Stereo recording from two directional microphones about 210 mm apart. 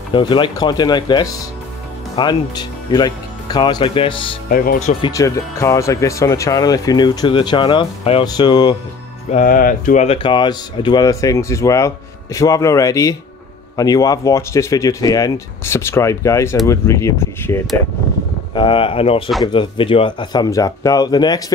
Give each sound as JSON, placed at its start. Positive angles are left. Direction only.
{"t": 0.1, "sound": "speech", "side_deg": 25}
{"t": 4.5, "sound": "speech", "side_deg": 40}
{"t": 5.0, "sound": "speech", "side_deg": 15}
{"t": 9.3, "sound": "speech", "side_deg": 40}
{"t": 18.5, "sound": "speech", "side_deg": 25}